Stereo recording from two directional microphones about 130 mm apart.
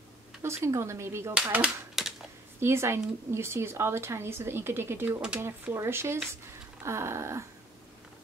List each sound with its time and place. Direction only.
0.4 s speech: 20° right (ahead or behind)
1.3 s speech: 10° right (ahead or behind)
2.6 s speech: 20° right (ahead or behind)